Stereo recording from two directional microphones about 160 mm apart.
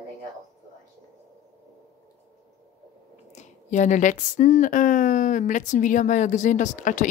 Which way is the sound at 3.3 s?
50° left (ahead or behind).